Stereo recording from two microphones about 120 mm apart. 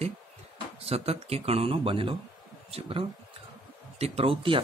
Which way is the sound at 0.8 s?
55° right (ahead or behind).